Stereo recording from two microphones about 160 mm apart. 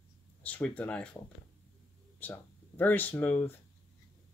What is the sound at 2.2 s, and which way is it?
Speech, 10° left (ahead or behind).